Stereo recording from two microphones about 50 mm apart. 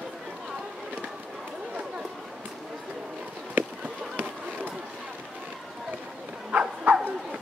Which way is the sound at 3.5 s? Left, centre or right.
Right.